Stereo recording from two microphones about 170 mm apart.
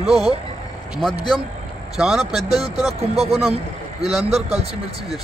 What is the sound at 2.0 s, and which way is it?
Speech, centre (ahead or behind).